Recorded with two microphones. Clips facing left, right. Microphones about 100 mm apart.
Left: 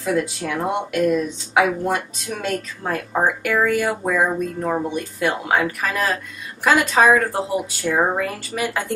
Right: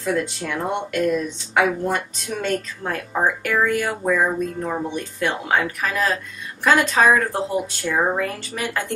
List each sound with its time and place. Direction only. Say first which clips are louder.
0.0 s speech: left 2 dB; 5° left (ahead or behind)